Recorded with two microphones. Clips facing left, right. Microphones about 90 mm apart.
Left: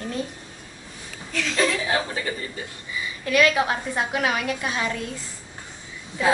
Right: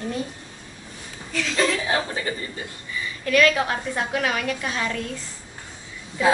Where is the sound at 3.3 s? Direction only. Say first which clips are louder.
Right 1 dB; 15° left (ahead or behind).